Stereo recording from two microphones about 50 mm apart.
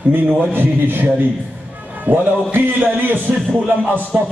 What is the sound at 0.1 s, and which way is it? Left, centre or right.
A man's voice, right.